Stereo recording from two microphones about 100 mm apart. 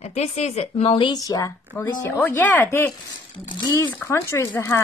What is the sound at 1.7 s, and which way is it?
A woman's voice, 15° left (ahead or behind).